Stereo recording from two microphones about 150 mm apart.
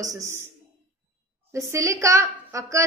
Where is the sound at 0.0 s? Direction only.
20° right (ahead or behind).